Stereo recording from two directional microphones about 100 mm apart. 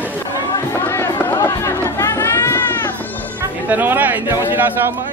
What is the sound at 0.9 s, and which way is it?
Run, 25° left (ahead or behind).